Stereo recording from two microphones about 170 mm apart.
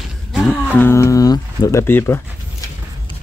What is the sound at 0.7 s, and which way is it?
Speech, 15° left (ahead or behind).